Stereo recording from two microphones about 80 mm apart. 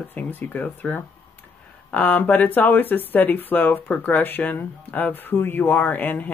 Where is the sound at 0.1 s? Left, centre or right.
Left.